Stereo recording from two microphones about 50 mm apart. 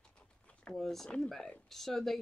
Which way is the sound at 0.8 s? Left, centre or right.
Centre.